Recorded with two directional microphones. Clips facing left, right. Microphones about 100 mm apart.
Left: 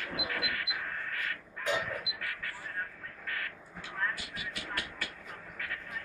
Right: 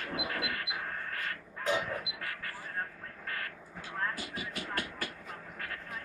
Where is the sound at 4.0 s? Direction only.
35° right (ahead or behind).